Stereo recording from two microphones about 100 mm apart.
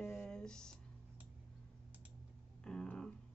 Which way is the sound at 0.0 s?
20° left (ahead or behind).